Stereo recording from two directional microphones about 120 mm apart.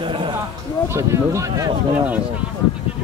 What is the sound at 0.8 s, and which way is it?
Speech, 25° right (ahead or behind).